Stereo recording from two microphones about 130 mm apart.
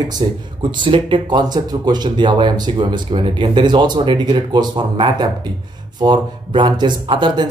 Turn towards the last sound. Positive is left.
turn(degrees=-35)  # may be behind; listen again after turning